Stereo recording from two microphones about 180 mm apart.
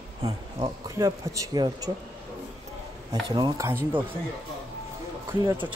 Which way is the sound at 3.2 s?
25° right (ahead or behind).